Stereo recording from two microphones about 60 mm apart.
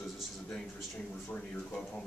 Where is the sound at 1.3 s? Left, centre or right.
Centre.